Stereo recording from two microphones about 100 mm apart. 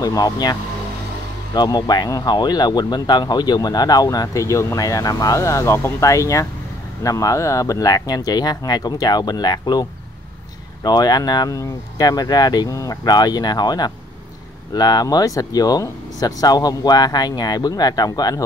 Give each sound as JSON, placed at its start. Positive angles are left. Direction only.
{"t": 0.0, "sound": "speech", "side_deg": 40}